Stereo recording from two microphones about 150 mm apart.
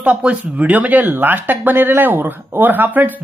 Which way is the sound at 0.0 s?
10° right (ahead or behind).